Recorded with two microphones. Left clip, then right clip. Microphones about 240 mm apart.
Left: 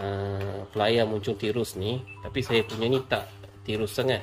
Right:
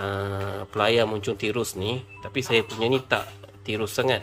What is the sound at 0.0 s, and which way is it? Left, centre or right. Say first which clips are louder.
Speech: right 3 dB; centre.